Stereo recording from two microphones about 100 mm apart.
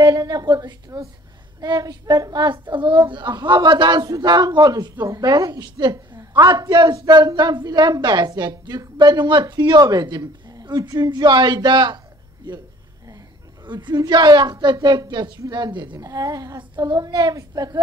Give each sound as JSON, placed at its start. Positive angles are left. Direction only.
{"t": 0.0, "sound": "a woman's voice", "side_deg": -45}
{"t": 13.7, "sound": "a woman's voice", "side_deg": -50}
{"t": 16.0, "sound": "a woman's voice", "side_deg": -35}